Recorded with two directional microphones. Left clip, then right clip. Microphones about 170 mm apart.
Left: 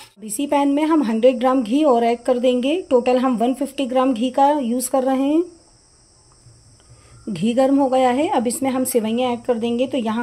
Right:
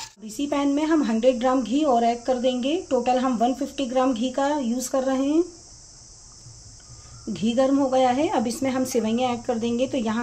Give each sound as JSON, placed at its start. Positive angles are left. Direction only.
{"t": 0.2, "sound": "speech", "side_deg": 45}
{"t": 7.3, "sound": "a woman's voice", "side_deg": 35}